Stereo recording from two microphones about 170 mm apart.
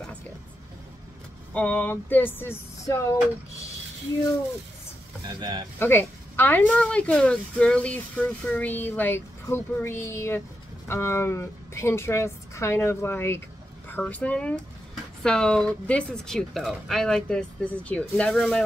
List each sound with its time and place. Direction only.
1.5 s speech: 10° left (ahead or behind)
5.4 s speech: 30° right (ahead or behind)
5.8 s speech: 10° left (ahead or behind)